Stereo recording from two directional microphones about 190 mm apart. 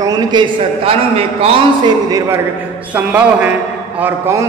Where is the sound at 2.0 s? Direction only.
20° right (ahead or behind).